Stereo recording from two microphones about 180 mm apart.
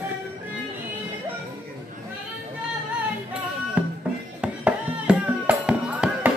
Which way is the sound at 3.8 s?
5° right (ahead or behind).